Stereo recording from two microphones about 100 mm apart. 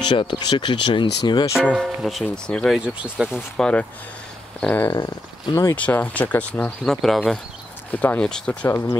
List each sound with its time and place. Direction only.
0.0 s speech: 50° left (ahead or behind)
1.5 s speech: 10° right (ahead or behind); by 2.8 s 5° left (ahead or behind)
2.8 s speech: 10° right (ahead or behind)
3.5 s speech: 10° left (ahead or behind)
4.9 s speech: 45° left (ahead or behind)
5.8 s speech: 15° left (ahead or behind)
6.8 s speech: 5° left (ahead or behind)
7.9 s speech: 15° left (ahead or behind)
8.6 s speech: 25° left (ahead or behind)